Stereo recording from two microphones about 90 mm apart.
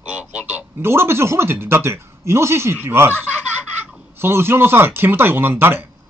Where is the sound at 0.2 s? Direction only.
15° right (ahead or behind).